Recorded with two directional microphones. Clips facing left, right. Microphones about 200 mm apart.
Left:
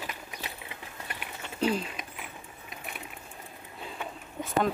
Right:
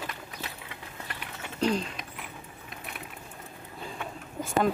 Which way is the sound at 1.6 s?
5° left (ahead or behind).